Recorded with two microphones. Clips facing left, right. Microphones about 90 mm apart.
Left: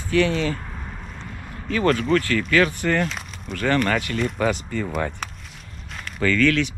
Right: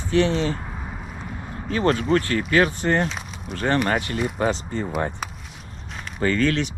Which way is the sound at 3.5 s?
25° right (ahead or behind).